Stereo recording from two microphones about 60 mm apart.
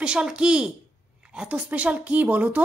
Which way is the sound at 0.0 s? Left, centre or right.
Centre.